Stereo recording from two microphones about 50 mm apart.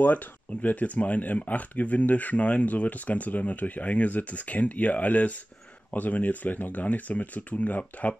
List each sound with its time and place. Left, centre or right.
0.0 s speech: left